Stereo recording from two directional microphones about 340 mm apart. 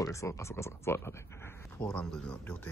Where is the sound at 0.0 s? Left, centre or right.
Centre.